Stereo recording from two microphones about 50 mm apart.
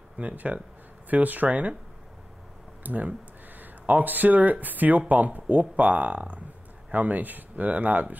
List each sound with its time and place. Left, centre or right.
0.2 s speech: right
2.8 s speech: right